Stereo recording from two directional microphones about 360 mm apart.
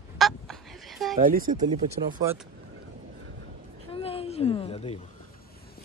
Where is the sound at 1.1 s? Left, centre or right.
Right.